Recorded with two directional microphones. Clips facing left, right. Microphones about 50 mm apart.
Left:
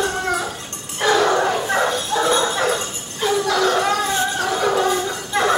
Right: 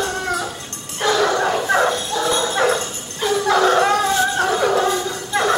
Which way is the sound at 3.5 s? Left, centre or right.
Right.